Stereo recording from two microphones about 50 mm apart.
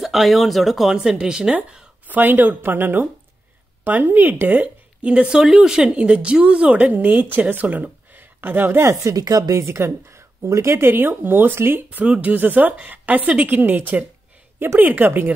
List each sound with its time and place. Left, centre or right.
0.0 s speech: centre
0.9 s speech: centre
2.0 s a woman's voice: right
5.0 s a woman's voice: right
6.9 s speech: right
8.7 s speech: right
12.2 s a woman's voice: right